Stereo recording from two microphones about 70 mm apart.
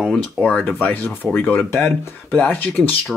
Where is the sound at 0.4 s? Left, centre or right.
Centre.